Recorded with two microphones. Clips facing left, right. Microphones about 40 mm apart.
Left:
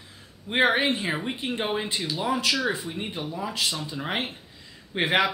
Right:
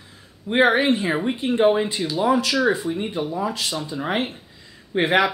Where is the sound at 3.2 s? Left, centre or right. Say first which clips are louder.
Right 6 dB; centre.